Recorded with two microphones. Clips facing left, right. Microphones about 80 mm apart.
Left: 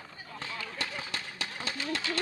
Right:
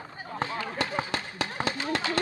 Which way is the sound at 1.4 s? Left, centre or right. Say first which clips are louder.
Right 8 dB; right.